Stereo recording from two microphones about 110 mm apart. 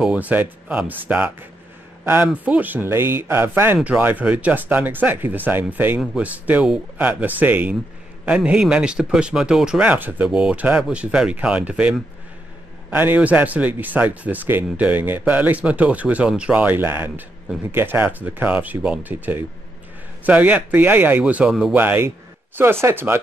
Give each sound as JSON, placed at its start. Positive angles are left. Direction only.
{"t": 0.0, "sound": "speech", "side_deg": -10}
{"t": 21.7, "sound": "speech", "side_deg": -15}